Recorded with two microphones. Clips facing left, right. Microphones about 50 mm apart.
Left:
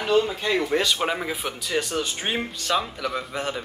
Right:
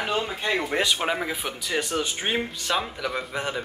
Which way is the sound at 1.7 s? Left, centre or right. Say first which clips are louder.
Left 1 dB; centre.